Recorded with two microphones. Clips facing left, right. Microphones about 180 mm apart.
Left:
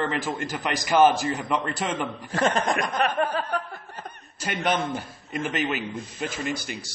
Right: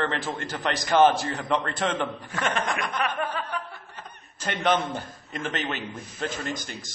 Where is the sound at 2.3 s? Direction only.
35° left (ahead or behind).